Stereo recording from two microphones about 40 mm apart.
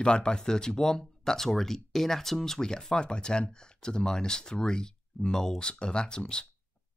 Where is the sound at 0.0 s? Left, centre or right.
Left.